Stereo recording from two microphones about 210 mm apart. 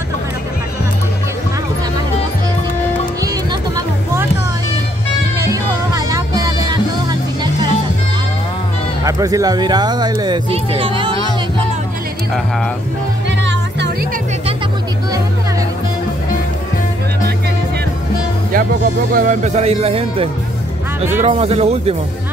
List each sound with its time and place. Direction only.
3.2 s music: 15° right (ahead or behind)
5.4 s music: 15° right (ahead or behind)
9.0 s speech: 15° right (ahead or behind)
13.4 s music: 60° right (ahead or behind)
19.1 s speech: 35° right (ahead or behind)